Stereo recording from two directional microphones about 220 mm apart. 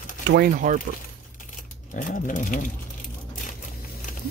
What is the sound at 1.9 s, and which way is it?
Vehicle, 35° left (ahead or behind).